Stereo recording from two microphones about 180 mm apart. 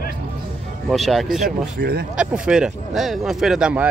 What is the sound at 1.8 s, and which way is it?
Speech, 60° right (ahead or behind).